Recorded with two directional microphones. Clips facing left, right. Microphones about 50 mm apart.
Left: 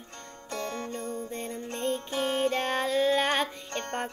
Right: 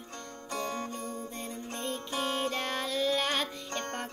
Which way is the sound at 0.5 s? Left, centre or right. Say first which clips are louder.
Left 1 dB; centre.